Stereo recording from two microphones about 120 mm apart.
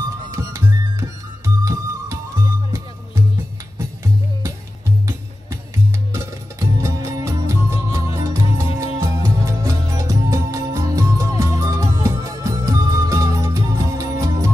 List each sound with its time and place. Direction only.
0.3 s music: 25° right (ahead or behind)
4.0 s music: 25° right (ahead or behind)
6.1 s music: 25° right (ahead or behind)